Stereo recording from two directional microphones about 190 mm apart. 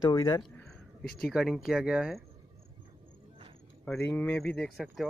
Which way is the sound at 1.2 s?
Centre (ahead or behind).